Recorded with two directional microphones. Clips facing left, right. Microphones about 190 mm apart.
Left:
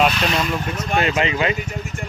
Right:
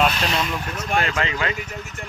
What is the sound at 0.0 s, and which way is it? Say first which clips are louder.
Speech: left 3 dB; 5° left (ahead or behind).